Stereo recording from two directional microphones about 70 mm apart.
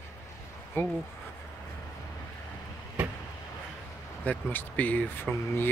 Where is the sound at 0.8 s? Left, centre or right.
Left.